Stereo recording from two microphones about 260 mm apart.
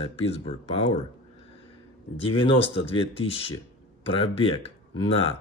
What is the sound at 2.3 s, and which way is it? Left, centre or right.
Speech, centre.